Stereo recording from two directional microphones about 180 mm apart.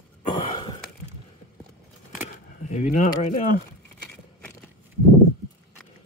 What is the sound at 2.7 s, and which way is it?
Speech, 45° left (ahead or behind).